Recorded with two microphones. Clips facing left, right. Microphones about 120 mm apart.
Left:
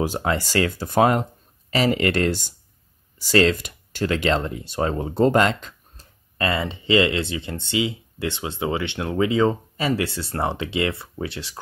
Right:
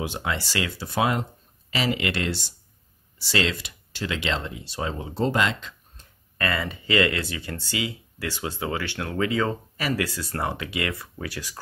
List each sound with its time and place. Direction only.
0.0 s speech: 40° left (ahead or behind)
6.3 s speech: 25° left (ahead or behind)